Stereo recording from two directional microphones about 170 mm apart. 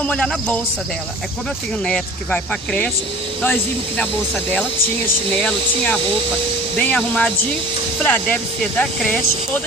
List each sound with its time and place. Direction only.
0.0 s speech: 5° left (ahead or behind)
1.9 s speech: 5° left (ahead or behind)
4.0 s speech: 10° left (ahead or behind)